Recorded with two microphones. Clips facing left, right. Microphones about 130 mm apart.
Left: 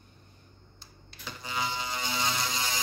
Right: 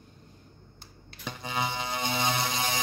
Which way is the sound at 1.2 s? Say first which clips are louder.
Right 2 dB; 60° right (ahead or behind).